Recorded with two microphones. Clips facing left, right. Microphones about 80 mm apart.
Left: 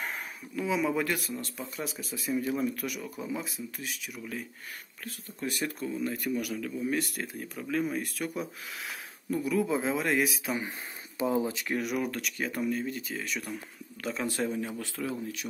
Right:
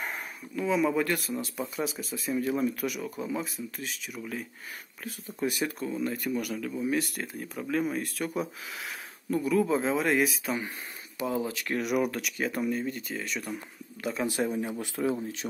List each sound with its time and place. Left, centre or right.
0.0 s speech: centre
9.3 s speech: centre
11.1 s speech: left
11.8 s speech: centre
14.3 s speech: centre